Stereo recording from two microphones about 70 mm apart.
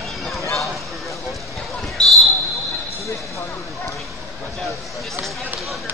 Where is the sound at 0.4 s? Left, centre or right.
Left.